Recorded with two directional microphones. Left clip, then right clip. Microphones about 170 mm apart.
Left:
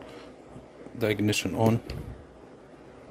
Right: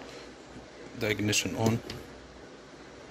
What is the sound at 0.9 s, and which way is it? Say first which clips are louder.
Speech: left 2 dB; 30° left (ahead or behind).